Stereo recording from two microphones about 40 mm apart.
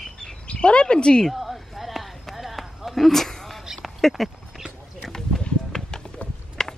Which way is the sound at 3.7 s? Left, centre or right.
Centre.